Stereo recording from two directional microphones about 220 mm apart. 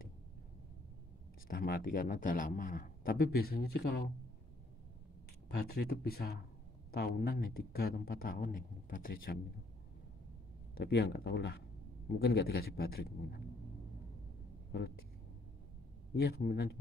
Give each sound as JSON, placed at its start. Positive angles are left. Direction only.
{"t": 1.5, "sound": "speech", "side_deg": 40}
{"t": 5.5, "sound": "speech", "side_deg": 45}
{"t": 10.7, "sound": "speech", "side_deg": 50}
{"t": 14.7, "sound": "speech", "side_deg": 50}
{"t": 16.2, "sound": "speech", "side_deg": 45}